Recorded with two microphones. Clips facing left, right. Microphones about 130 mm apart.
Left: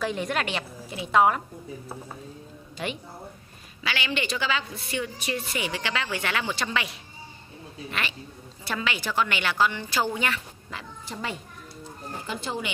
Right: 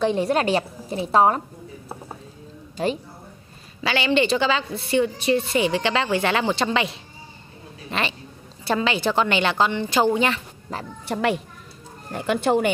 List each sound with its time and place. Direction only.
0.0 s a woman's voice: 30° right (ahead or behind)
2.8 s a woman's voice: 35° right (ahead or behind)
10.7 s a woman's voice: 40° right (ahead or behind)
11.1 s a woman's voice: 75° right (ahead or behind)